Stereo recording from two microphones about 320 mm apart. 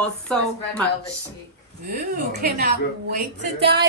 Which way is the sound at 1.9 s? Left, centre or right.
Right.